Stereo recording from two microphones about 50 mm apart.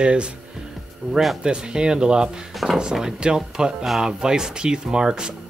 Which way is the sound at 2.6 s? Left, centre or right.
Centre.